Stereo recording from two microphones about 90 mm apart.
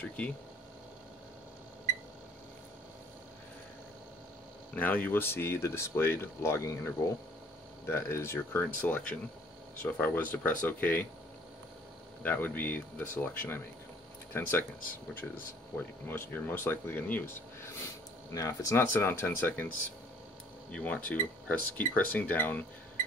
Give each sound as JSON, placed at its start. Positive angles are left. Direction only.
{"t": 0.0, "sound": "speech", "side_deg": 15}
{"t": 4.7, "sound": "speech", "side_deg": 20}
{"t": 12.2, "sound": "speech", "side_deg": 20}
{"t": 15.7, "sound": "speech", "side_deg": 25}
{"t": 20.7, "sound": "speech", "side_deg": 15}